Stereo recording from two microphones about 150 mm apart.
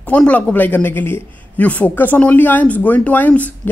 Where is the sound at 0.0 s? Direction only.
10° left (ahead or behind).